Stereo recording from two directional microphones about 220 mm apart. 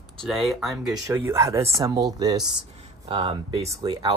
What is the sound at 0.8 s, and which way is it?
Speech, 15° right (ahead or behind).